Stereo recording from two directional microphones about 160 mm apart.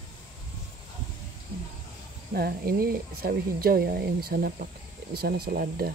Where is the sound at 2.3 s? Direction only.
70° right (ahead or behind).